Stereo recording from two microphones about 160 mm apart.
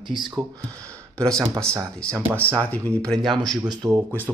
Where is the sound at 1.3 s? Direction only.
20° right (ahead or behind).